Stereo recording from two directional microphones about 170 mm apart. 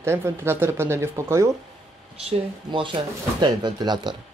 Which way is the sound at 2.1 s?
30° right (ahead or behind).